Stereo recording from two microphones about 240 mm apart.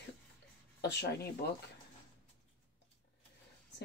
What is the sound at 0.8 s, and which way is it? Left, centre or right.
Speech, left.